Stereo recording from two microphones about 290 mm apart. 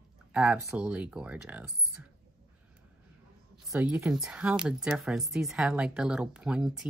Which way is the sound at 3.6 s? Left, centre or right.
Centre.